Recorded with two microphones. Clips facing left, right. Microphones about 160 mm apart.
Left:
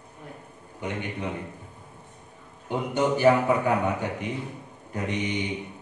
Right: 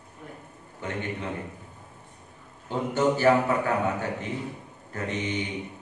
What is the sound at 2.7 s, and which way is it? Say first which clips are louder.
A man's voice: even; 15° left (ahead or behind).